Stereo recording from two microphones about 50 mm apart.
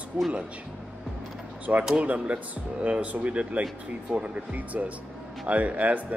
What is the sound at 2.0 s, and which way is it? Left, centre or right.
Speech, right.